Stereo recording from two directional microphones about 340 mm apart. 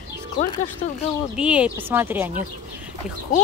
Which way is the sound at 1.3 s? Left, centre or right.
Centre.